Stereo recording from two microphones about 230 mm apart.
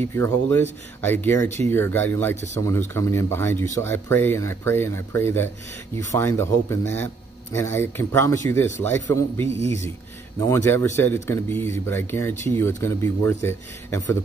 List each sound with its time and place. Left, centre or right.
0.0 s speech: centre
9.5 s speech: right
10.4 s speech: centre